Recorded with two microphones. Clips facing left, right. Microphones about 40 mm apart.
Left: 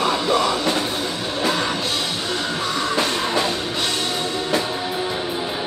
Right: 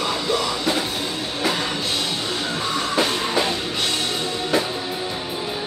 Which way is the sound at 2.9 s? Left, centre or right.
Centre.